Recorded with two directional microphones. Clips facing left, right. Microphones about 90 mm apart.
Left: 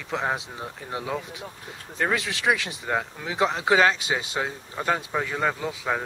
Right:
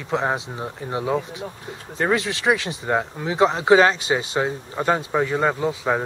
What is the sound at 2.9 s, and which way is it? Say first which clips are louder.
Speech: right 5 dB; 20° right (ahead or behind).